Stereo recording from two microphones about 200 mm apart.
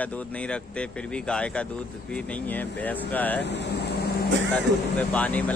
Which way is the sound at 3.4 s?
60° left (ahead or behind).